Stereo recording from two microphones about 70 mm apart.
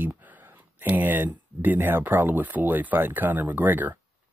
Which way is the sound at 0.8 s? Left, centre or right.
Right.